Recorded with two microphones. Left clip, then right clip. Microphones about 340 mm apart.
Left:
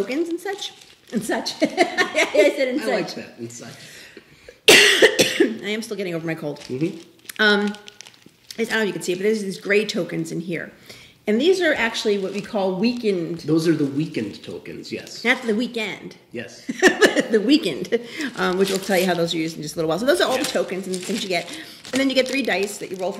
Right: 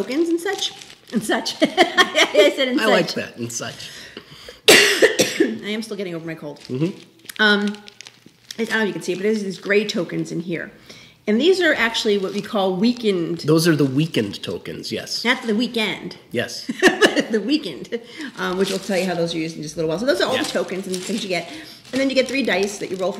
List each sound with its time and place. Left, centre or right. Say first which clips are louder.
0.1 s speech: right 4 dB; centre
3.0 s speech: right 6 dB; right
4.6 s speech: even; centre
13.5 s speech: right 3 dB; right
15.2 s speech: left 1 dB; centre